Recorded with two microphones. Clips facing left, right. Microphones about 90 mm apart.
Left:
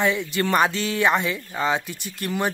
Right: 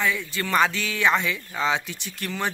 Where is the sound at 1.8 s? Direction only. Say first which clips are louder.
Left 3 dB; 45° left (ahead or behind).